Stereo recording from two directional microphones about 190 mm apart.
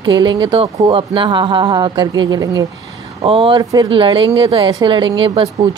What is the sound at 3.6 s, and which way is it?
Speech, 20° right (ahead or behind).